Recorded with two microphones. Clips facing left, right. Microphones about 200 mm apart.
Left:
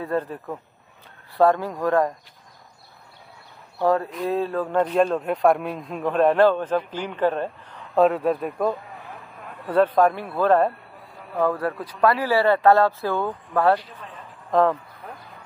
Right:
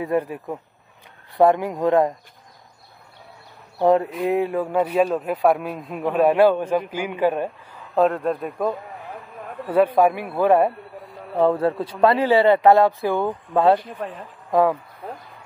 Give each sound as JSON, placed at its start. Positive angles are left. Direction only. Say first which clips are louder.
{"t": 0.0, "sound": "speech", "louder": "right 3 dB", "side_deg": -15}
{"t": 3.8, "sound": "speech", "louder": "right 4 dB", "side_deg": -20}
{"t": 7.9, "sound": "a man's voice", "louder": "left 1 dB", "side_deg": 0}
{"t": 11.3, "sound": "speech", "louder": "right 4 dB", "side_deg": -25}
{"t": 14.0, "sound": "speech", "louder": "right 11 dB", "side_deg": -65}
{"t": 14.5, "sound": "speech", "louder": "right 1 dB", "side_deg": -10}
{"t": 15.0, "sound": "a sound", "louder": "right 6 dB", "side_deg": -30}